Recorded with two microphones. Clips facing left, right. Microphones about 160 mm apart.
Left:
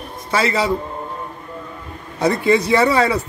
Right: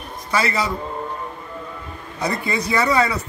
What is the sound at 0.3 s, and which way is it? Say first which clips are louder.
Speech: left 4 dB; 25° left (ahead or behind).